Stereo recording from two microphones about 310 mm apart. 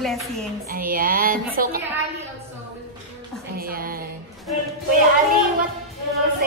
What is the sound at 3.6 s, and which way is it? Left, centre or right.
Speech, right.